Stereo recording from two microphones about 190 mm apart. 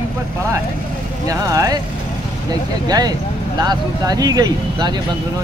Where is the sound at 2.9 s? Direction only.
20° right (ahead or behind).